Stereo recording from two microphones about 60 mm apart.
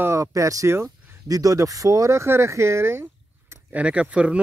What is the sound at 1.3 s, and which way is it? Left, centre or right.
Speech, right.